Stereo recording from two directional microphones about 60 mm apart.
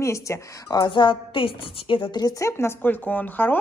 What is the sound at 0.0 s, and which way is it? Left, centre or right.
Speech, left.